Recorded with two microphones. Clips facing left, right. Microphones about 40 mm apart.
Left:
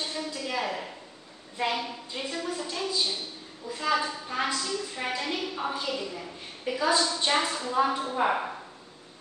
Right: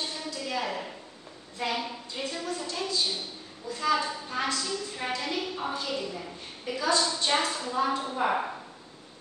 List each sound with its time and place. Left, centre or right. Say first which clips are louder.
0.0 s a sound: left 2 dB; centre
1.6 s a woman's voice: left 2 dB; centre
6.6 s a woman's voice: left 2 dB; centre
7.3 s a woman's voice: left 3 dB; centre